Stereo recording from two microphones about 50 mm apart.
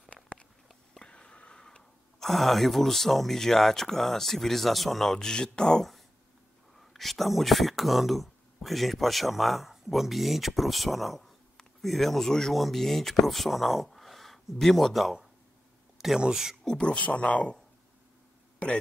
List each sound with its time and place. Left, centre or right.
0.1 s a sound: left
0.9 s whispering: centre
2.2 s speech: centre
5.1 s speech: centre
6.8 s speech: centre
16.2 s speech: centre
16.6 s speech: centre